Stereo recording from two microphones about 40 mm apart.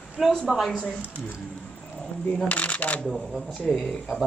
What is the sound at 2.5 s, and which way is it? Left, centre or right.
Speech, left.